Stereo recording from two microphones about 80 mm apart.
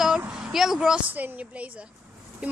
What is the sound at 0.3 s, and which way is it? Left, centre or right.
Speech, centre.